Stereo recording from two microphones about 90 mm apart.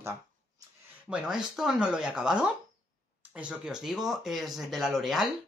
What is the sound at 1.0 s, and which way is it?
Speech, 10° right (ahead or behind).